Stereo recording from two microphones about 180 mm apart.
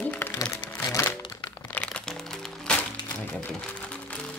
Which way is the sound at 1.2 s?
20° left (ahead or behind).